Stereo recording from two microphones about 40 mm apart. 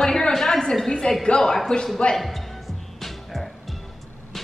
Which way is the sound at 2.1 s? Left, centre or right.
Centre.